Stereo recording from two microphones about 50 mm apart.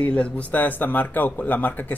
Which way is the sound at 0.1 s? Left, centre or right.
Left.